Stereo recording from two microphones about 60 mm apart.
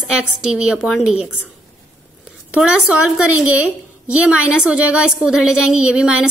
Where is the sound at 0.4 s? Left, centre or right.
Centre.